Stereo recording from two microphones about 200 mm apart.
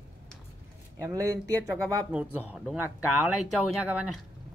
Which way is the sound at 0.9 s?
15° right (ahead or behind).